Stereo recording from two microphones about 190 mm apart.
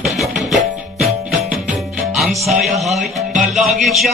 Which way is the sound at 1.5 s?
Centre (ahead or behind).